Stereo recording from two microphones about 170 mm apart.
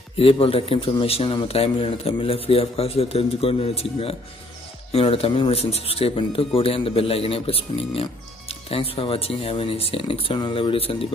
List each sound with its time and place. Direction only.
0.2 s speech: 35° left (ahead or behind)